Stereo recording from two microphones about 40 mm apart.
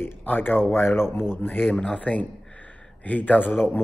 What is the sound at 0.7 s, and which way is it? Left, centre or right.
Speech, left.